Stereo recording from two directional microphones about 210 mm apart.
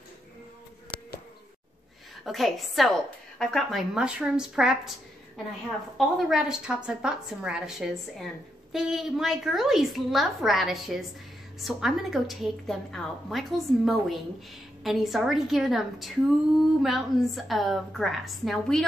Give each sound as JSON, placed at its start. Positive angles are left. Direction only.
{"t": 2.2, "sound": "a woman's voice", "side_deg": 0}
{"t": 5.9, "sound": "a woman's voice", "side_deg": 0}